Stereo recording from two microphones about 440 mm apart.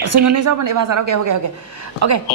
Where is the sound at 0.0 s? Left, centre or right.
Right.